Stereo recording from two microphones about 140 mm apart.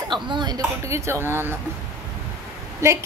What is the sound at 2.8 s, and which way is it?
Speech, 20° right (ahead or behind).